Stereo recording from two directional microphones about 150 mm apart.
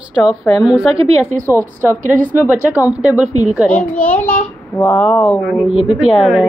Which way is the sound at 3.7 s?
10° left (ahead or behind).